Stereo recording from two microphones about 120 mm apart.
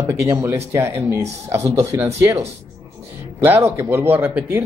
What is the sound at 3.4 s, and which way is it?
A man's voice, 20° right (ahead or behind).